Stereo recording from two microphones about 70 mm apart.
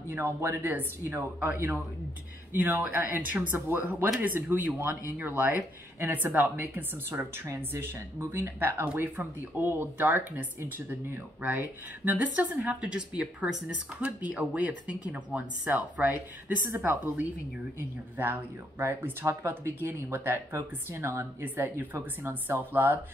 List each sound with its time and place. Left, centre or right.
0.1 s speech: right
8.5 s speech: right
11.4 s speech: right